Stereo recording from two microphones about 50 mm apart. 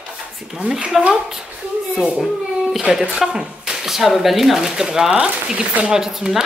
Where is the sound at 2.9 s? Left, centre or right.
Centre.